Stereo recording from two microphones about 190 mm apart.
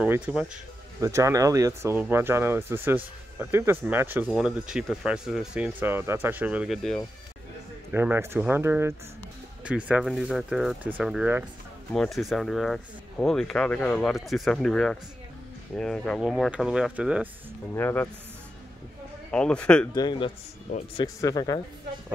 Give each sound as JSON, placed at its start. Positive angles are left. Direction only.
{"t": 0.0, "sound": "speech", "side_deg": -5}
{"t": 1.0, "sound": "speech", "side_deg": -15}
{"t": 7.9, "sound": "speech", "side_deg": -10}
{"t": 17.7, "sound": "speech", "side_deg": 10}
{"t": 19.3, "sound": "speech", "side_deg": 5}
{"t": 19.9, "sound": "speech", "side_deg": 20}